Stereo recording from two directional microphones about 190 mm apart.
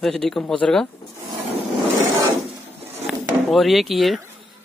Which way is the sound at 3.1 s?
Centre (ahead or behind).